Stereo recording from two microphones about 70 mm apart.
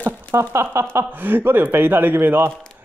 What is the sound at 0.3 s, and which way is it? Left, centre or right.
Speech, right.